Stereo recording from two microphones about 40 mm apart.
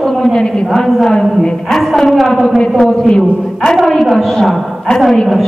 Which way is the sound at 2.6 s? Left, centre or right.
Centre.